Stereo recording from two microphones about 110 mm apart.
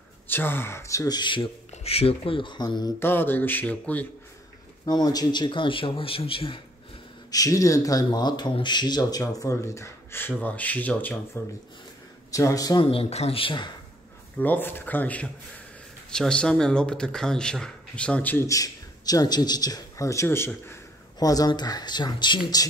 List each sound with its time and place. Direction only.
0.3 s speech: 20° left (ahead or behind); by 1.5 s 45° left (ahead or behind)
1.7 s a man's voice: 70° left (ahead or behind); by 2.9 s 40° left (ahead or behind)
3.0 s speech: 20° left (ahead or behind)
4.8 s a man's voice: 35° left (ahead or behind); by 6.6 s 55° left (ahead or behind)
7.2 s a man's voice: 35° left (ahead or behind)
9.2 s a man's voice: 30° left (ahead or behind)
12.9 s speech: 65° left (ahead or behind); by 13.7 s 50° left (ahead or behind)
14.4 s speech: 20° left (ahead or behind)
18.5 s speech: 35° left (ahead or behind)
21.2 s a man's voice: 35° left (ahead or behind)